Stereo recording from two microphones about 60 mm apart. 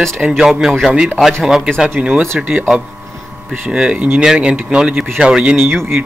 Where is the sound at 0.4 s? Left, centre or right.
Centre.